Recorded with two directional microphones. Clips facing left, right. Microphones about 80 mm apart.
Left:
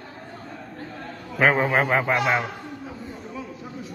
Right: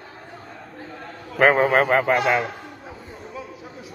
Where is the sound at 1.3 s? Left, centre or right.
Right.